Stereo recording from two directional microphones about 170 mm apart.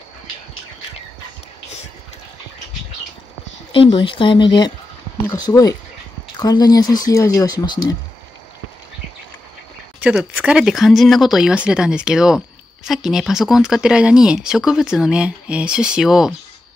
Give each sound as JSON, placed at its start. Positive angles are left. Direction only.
{"t": 3.7, "sound": "speech", "side_deg": 30}
{"t": 10.0, "sound": "speech", "side_deg": -5}